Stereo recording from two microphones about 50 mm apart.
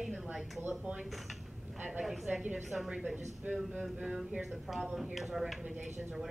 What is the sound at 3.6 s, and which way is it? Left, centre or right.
A woman's voice, centre.